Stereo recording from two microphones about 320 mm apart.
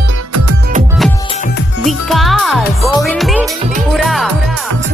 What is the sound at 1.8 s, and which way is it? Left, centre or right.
Music, centre.